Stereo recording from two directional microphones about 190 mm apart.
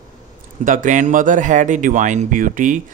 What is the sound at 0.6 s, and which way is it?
Speech, 45° right (ahead or behind).